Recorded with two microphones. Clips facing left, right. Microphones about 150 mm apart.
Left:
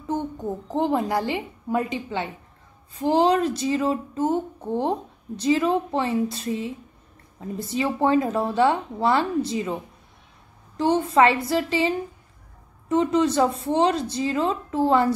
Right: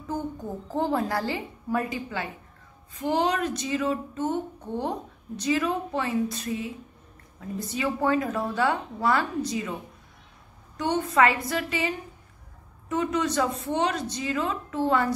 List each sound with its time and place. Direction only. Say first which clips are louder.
0.1 s speech: left 4 dB; 20° left (ahead or behind)
10.8 s speech: left 4 dB; 30° left (ahead or behind)